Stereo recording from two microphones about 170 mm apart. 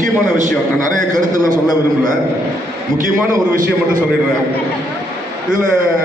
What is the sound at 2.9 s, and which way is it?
A man's voice, 50° right (ahead or behind).